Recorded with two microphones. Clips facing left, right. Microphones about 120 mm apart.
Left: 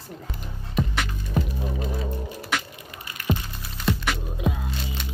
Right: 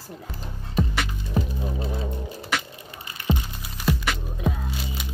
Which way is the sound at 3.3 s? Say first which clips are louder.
Even; 25° right (ahead or behind).